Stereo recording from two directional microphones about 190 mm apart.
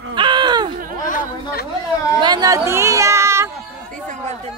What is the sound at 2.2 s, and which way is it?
A woman's voice, 20° right (ahead or behind).